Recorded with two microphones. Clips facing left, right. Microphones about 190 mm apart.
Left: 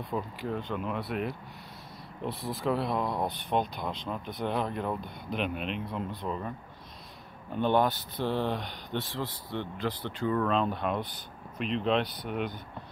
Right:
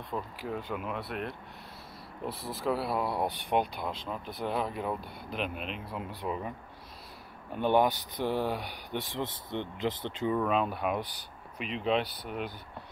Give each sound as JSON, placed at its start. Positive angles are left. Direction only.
{"t": 0.1, "sound": "speech", "side_deg": -5}
{"t": 7.5, "sound": "speech", "side_deg": -10}